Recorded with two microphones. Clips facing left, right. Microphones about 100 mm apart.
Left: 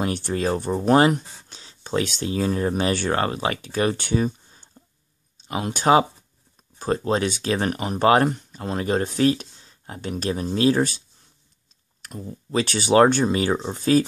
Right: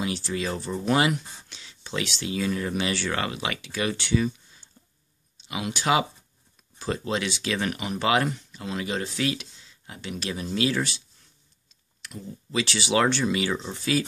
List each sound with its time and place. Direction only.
0.0 s speech: 50° left (ahead or behind)
12.0 s speech: 45° left (ahead or behind)